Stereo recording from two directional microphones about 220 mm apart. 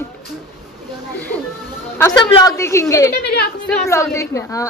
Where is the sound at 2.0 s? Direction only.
15° left (ahead or behind).